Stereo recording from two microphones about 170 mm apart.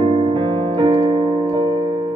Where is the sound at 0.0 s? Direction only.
35° right (ahead or behind).